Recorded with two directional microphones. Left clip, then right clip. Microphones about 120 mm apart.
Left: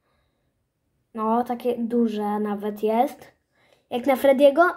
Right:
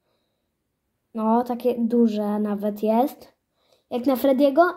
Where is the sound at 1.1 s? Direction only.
70° right (ahead or behind).